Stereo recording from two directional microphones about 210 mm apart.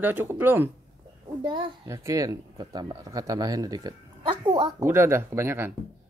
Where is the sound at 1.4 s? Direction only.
20° right (ahead or behind).